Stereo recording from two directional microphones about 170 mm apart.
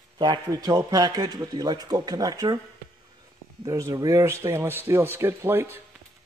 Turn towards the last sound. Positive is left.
turn(degrees=-15)  # may be behind; listen again after turning